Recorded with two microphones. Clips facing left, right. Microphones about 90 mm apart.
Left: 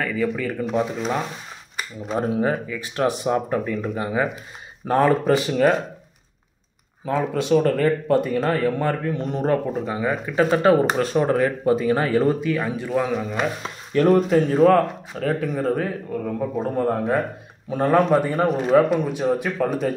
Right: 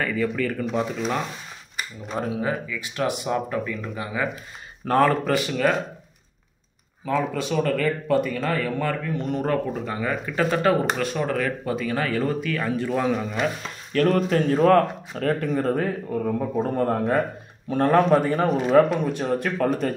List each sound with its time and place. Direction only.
0.0 s speech: 5° left (ahead or behind)
2.2 s speech: 35° left (ahead or behind)
4.8 s speech: 15° left (ahead or behind)
5.3 s speech: 30° left (ahead or behind)
7.1 s speech: 25° left (ahead or behind)
12.9 s speech: centre (ahead or behind)
13.6 s speech: 20° left (ahead or behind)
14.3 s speech: 5° left (ahead or behind)